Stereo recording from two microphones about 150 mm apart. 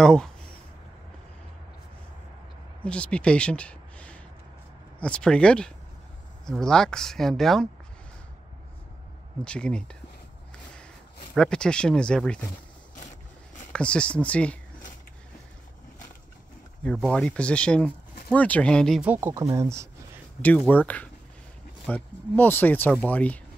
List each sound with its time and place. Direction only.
0.0 s speech: 5° left (ahead or behind)
2.8 s speech: 10° left (ahead or behind)
9.4 s speech: 5° left (ahead or behind)
11.3 s speech: 5° left (ahead or behind)
13.7 s speech: 5° left (ahead or behind)
16.8 s speech: 5° left (ahead or behind)
18.9 s speech: 15° right (ahead or behind)
20.4 s speech: 10° left (ahead or behind)